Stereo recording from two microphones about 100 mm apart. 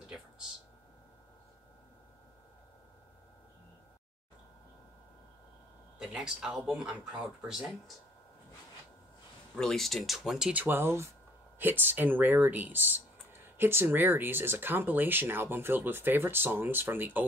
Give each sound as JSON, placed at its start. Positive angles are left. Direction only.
{"t": 5.9, "sound": "speech", "side_deg": -5}
{"t": 9.6, "sound": "speech", "side_deg": 5}
{"t": 10.5, "sound": "speech", "side_deg": -20}